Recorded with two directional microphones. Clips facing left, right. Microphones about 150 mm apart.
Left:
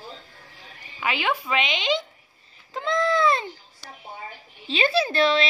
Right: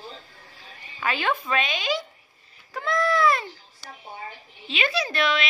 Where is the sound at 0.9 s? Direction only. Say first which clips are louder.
Even; 15° left (ahead or behind).